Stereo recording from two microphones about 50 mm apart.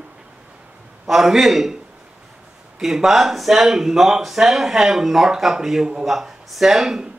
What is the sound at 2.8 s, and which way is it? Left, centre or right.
Speech, centre.